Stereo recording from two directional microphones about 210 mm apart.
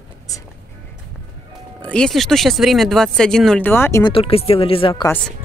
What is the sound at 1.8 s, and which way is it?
Speech, 5° left (ahead or behind).